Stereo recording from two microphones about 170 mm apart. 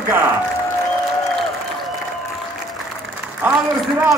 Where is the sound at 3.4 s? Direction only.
10° right (ahead or behind).